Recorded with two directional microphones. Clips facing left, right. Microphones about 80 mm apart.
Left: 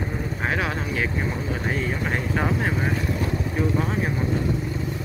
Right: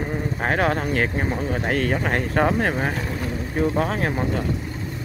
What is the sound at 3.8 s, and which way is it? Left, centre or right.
Speech, right.